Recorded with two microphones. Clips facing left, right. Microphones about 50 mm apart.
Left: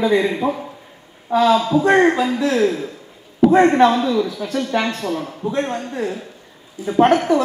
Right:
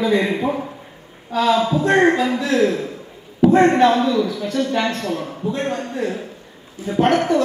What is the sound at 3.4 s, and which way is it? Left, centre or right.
A woman's voice, centre.